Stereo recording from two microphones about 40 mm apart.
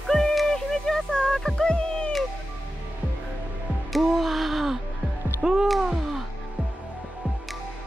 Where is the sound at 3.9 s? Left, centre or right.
Centre.